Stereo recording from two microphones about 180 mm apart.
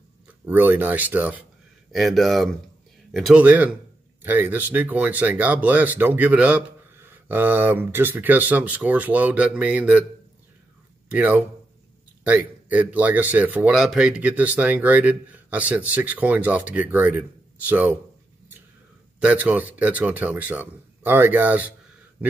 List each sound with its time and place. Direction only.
0.5 s speech: 10° right (ahead or behind)
11.1 s speech: 10° right (ahead or behind)
19.1 s speech: 10° right (ahead or behind)